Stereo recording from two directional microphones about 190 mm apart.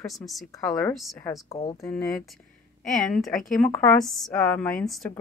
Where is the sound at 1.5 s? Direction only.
30° left (ahead or behind).